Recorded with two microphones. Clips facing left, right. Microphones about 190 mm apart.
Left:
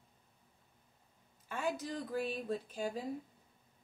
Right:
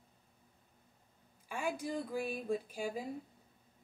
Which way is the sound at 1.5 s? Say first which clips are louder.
Even; 10° right (ahead or behind).